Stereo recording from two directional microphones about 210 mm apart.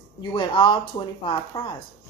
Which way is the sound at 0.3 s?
25° left (ahead or behind).